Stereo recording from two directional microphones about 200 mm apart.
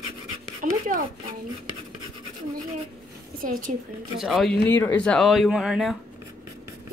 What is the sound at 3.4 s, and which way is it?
Speech, 40° right (ahead or behind).